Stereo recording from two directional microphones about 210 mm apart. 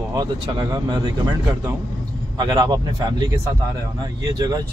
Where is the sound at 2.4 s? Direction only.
20° right (ahead or behind).